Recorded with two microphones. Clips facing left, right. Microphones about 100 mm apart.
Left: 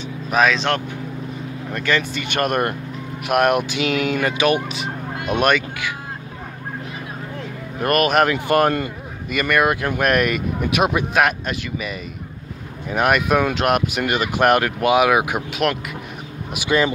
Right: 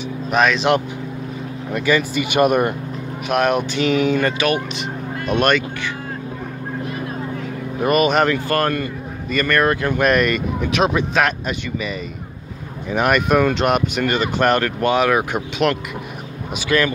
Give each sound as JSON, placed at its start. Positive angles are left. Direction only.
{"t": 0.3, "sound": "speech", "side_deg": 0}
{"t": 1.7, "sound": "speech", "side_deg": -5}
{"t": 4.3, "sound": "speech", "side_deg": 15}
{"t": 4.6, "sound": "speech", "side_deg": 5}
{"t": 7.8, "sound": "speech", "side_deg": 0}
{"t": 8.5, "sound": "speech", "side_deg": 15}
{"t": 12.9, "sound": "speech", "side_deg": 5}
{"t": 16.5, "sound": "speech", "side_deg": 20}